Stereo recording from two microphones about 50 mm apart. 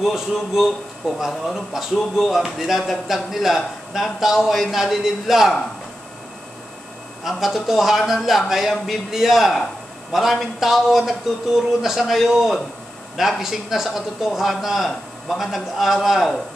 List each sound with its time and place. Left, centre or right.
0.0 s a man's voice: centre
7.2 s a man's voice: centre